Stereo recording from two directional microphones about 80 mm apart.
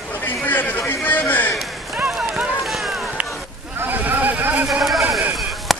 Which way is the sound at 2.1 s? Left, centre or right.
Centre.